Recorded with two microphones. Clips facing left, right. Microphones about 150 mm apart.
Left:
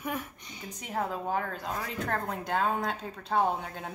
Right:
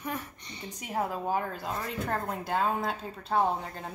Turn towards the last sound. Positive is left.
turn(degrees=0)  # may be behind; listen again after turning